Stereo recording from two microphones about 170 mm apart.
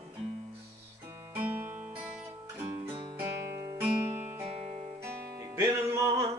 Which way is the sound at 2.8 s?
25° right (ahead or behind).